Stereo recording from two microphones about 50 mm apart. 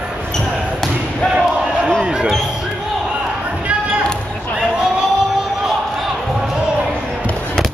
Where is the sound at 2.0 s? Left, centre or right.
Centre.